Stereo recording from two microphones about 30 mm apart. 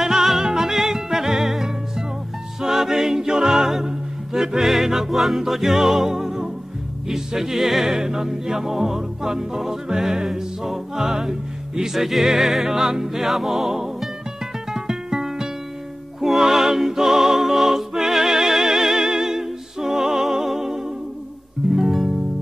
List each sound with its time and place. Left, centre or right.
0.0 s music: centre